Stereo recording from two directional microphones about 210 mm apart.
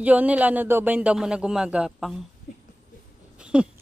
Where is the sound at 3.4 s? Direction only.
5° right (ahead or behind).